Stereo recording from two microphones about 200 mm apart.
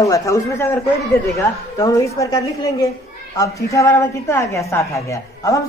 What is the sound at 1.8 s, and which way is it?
A woman's voice, 15° left (ahead or behind).